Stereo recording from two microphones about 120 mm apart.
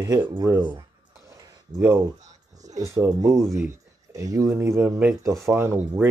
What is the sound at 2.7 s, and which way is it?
Speech, 25° right (ahead or behind).